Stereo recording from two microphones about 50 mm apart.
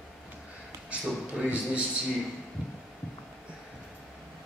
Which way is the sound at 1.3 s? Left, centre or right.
Right.